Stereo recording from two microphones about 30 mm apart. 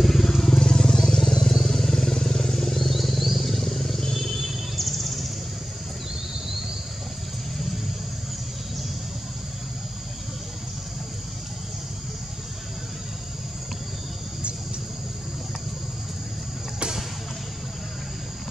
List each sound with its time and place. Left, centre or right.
0.0 s vehicle: centre; by 2.7 s left
2.7 s wild animals: centre
3.0 s wild animals: centre
3.3 s wild animals: centre